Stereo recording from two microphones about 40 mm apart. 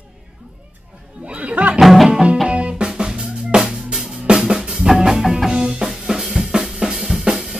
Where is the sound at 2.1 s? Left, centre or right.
Right.